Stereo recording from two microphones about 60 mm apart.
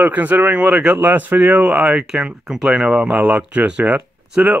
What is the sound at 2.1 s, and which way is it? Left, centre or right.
Speech, centre.